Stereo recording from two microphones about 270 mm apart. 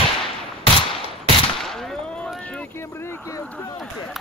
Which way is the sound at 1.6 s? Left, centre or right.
Centre.